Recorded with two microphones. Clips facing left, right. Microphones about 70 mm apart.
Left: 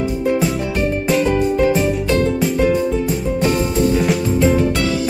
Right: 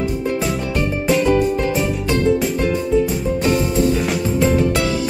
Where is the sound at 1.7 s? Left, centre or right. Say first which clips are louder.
Left 3 dB; centre.